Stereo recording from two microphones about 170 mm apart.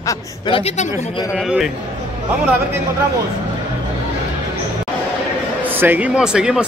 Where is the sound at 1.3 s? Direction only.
5° right (ahead or behind).